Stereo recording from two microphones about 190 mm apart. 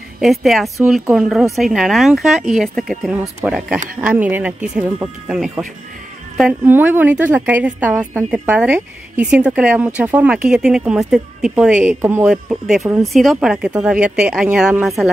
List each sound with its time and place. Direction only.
0.2 s a woman's voice: centre (ahead or behind)
12.8 s a woman's voice: 15° right (ahead or behind)
13.1 s speech: centre (ahead or behind)